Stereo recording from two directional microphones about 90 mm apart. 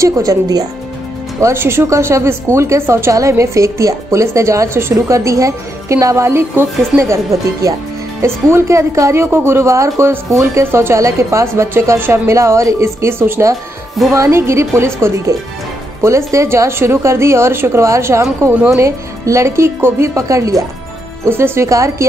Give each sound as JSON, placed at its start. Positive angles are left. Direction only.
{"t": 0.0, "sound": "a woman's voice", "side_deg": -35}
{"t": 1.4, "sound": "a woman's voice", "side_deg": -25}